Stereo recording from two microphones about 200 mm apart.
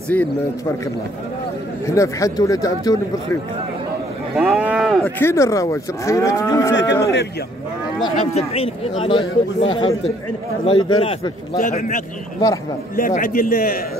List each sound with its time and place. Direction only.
0.1 s moo: 10° left (ahead or behind)
1.9 s moo: 15° left (ahead or behind)
4.4 s cattle: 5° right (ahead or behind)
5.2 s moo: 15° left (ahead or behind)
6.7 s a man's voice: 65° left (ahead or behind)
8.0 s a man's voice: 30° left (ahead or behind); by 13.8 s 45° left (ahead or behind)